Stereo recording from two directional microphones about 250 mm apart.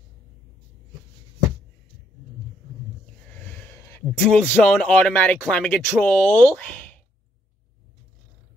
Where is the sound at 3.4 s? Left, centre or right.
Centre.